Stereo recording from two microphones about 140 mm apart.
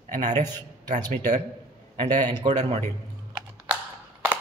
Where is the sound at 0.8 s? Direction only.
60° right (ahead or behind).